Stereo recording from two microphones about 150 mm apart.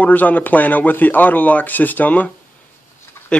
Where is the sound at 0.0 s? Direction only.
10° left (ahead or behind).